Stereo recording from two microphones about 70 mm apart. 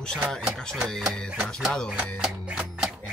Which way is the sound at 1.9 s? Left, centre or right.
Centre.